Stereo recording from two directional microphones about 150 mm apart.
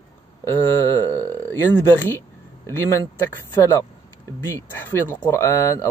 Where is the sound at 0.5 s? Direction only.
15° left (ahead or behind).